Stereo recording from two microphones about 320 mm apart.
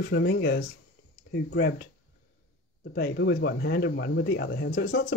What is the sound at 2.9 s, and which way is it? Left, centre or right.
Speech, left.